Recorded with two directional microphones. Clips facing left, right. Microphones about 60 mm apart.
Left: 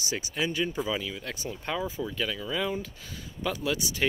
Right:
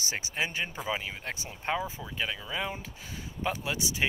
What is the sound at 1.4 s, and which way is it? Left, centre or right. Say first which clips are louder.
Speech: even; right.